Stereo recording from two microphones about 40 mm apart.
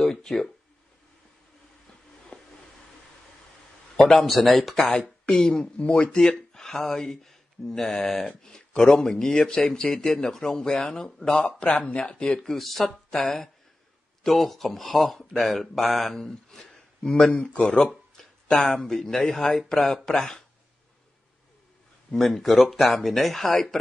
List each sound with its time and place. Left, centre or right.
0.0 s a sound: centre
2.3 s a sound: left
3.9 s speech: centre
5.3 s speech: centre
5.8 s speech: left
11.6 s speech: left
12.4 s speech: centre; by 17.8 s left
18.5 s speech: centre
22.1 s speech: centre